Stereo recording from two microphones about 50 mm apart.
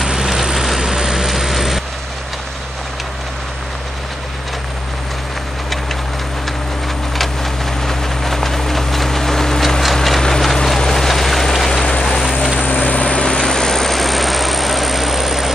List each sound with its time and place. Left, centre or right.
0.0 s vehicle: centre
7.8 s train: centre
12.5 s vehicle: centre
13.4 s vehicle: centre